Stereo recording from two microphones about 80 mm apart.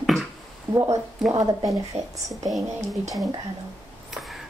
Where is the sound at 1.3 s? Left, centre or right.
Right.